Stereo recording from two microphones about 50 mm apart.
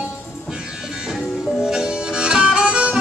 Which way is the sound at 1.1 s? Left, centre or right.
Centre.